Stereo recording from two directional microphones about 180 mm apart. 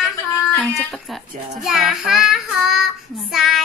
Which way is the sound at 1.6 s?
Centre (ahead or behind).